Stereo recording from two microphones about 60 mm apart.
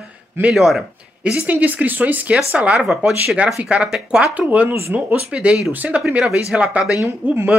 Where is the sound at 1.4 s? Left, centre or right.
Right.